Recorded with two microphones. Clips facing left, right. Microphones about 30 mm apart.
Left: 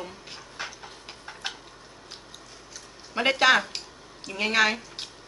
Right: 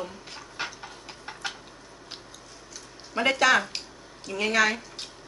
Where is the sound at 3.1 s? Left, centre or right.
Left.